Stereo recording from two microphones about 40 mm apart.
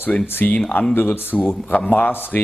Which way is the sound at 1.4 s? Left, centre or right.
Left.